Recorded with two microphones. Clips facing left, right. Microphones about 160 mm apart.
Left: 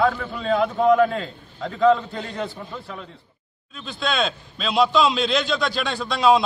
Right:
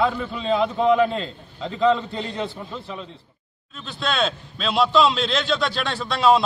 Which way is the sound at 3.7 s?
Centre (ahead or behind).